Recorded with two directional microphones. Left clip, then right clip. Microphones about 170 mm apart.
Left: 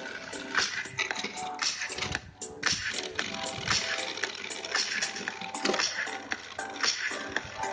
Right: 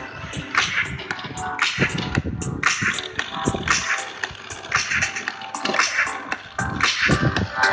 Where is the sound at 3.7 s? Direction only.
20° left (ahead or behind).